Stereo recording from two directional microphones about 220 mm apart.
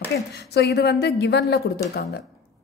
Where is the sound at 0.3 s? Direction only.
45° left (ahead or behind).